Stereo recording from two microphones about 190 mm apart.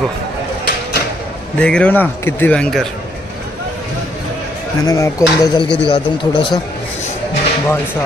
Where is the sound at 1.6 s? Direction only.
5° left (ahead or behind).